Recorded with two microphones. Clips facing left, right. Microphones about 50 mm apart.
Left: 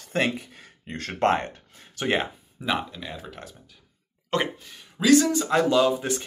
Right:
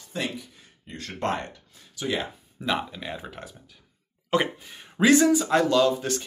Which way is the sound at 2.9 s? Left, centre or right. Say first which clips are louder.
Right 2 dB; centre.